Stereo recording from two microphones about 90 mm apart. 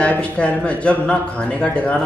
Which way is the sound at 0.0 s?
15° left (ahead or behind).